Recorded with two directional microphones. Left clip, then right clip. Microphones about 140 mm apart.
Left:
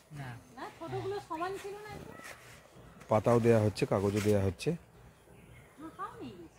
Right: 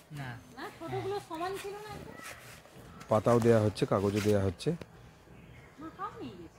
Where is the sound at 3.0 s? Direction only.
5° left (ahead or behind).